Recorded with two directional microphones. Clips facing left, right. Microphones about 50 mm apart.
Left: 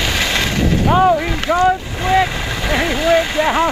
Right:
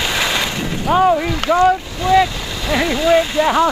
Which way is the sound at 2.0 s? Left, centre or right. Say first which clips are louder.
Right 2 dB; left.